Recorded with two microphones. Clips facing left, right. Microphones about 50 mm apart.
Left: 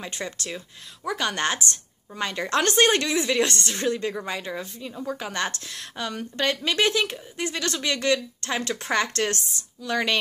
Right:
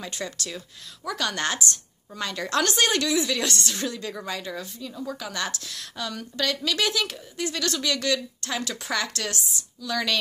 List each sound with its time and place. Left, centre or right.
0.0 s a woman's voice: left